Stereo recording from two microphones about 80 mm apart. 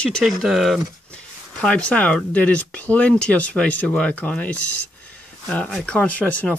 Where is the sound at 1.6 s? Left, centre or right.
Centre.